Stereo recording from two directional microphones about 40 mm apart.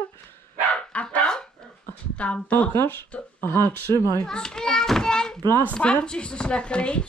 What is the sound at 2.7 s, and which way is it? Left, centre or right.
Speech, left.